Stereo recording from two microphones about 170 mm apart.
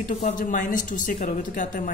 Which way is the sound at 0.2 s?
50° left (ahead or behind).